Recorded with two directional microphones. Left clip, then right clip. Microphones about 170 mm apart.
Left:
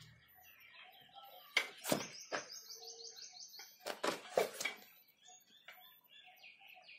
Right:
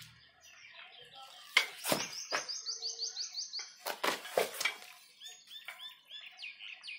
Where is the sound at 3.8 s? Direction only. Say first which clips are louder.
Right 4 dB; 30° left (ahead or behind).